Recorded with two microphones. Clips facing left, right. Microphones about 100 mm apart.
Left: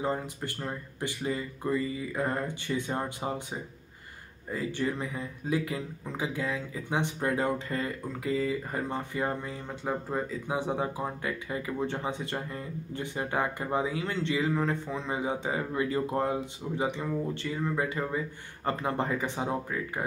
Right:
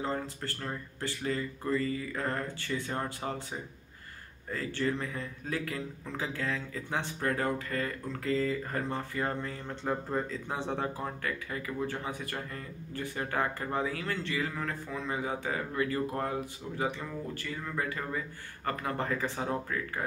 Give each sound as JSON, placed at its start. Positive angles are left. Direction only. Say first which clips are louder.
{"t": 0.0, "sound": "speech", "louder": "left 3 dB", "side_deg": 15}
{"t": 4.5, "sound": "a man's voice", "louder": "left 1 dB", "side_deg": 15}